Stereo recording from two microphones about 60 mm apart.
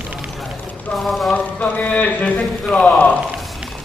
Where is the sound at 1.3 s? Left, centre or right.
Left.